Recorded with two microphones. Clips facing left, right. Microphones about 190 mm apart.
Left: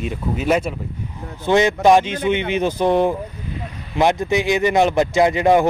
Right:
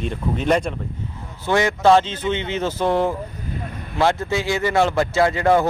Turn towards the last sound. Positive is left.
turn(degrees=15)  # may be behind; listen again after turning